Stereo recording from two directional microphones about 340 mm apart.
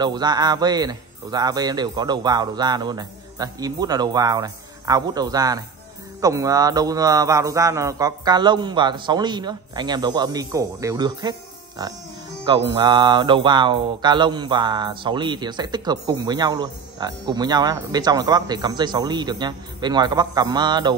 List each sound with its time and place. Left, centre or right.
0.0 s mantra: centre